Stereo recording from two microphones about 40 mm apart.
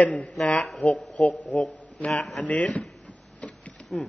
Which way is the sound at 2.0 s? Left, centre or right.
Left.